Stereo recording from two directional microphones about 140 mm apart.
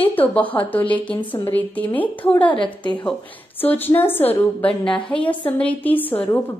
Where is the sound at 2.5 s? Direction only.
35° left (ahead or behind).